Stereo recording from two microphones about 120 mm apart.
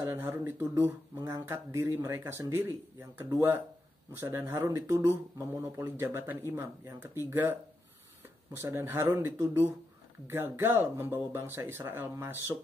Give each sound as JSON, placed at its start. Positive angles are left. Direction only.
{"t": 0.1, "sound": "speech", "side_deg": -20}
{"t": 8.5, "sound": "speech", "side_deg": -20}